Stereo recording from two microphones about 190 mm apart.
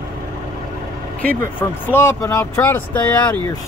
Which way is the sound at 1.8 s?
15° left (ahead or behind).